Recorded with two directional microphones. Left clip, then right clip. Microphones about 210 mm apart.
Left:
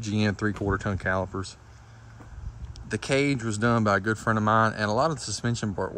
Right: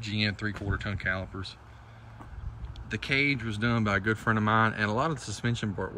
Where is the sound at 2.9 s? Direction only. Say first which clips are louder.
Left 2 dB; 10° left (ahead or behind).